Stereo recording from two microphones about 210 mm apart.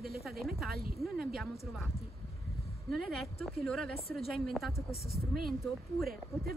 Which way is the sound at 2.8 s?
Centre (ahead or behind).